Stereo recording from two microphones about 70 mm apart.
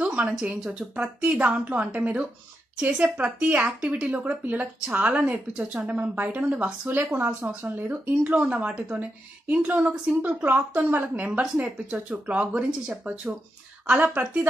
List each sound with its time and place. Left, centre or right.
0.0 s speech: centre